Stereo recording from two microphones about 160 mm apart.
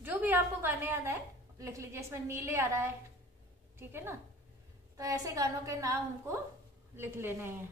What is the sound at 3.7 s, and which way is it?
A woman's voice, 15° right (ahead or behind).